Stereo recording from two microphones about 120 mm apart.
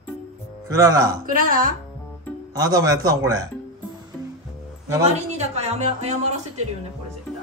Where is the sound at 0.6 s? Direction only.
30° right (ahead or behind).